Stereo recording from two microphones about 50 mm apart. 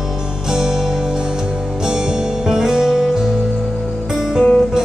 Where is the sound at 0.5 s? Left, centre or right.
Centre.